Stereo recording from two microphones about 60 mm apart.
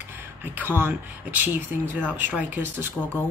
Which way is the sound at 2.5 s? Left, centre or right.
Right.